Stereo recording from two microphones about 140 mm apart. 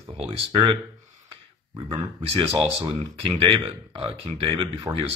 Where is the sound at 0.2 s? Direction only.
35° right (ahead or behind).